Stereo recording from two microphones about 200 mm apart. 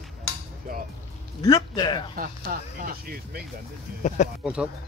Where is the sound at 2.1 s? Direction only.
45° right (ahead or behind).